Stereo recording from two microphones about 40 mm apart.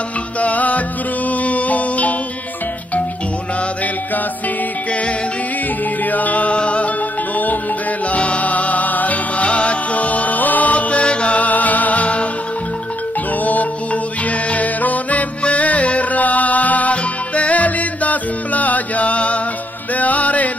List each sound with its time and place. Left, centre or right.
0.4 s music: left
6.0 s music: left
8.1 s music: left
13.4 s music: left
20.0 s chant: left